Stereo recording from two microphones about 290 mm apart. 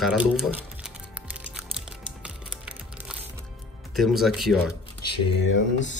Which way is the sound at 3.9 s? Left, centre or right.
Centre.